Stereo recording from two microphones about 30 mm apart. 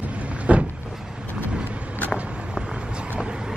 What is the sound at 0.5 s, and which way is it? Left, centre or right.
Vehicle, right.